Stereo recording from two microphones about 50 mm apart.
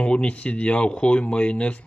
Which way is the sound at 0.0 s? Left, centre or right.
Left.